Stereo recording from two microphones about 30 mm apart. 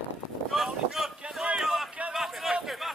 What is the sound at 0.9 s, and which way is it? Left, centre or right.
Boat, centre.